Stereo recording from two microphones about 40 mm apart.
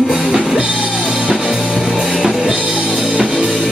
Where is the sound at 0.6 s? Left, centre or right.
Centre.